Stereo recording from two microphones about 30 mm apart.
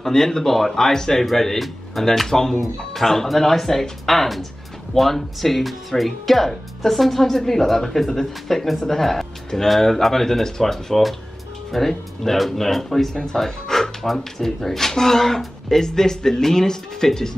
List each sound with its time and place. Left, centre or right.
0.0 s speech: centre
8.6 s speech: centre
8.9 s a man's voice: centre